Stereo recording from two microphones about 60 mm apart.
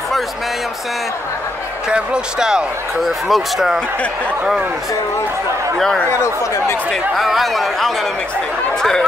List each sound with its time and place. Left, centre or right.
1.9 s speech: centre
3.0 s speech: centre
6.0 s speech: left
6.9 s speech: centre